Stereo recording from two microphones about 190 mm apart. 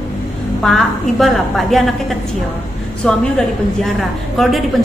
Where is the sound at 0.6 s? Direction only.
Centre (ahead or behind).